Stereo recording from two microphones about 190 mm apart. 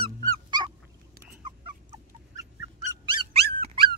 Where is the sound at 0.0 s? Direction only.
25° right (ahead or behind).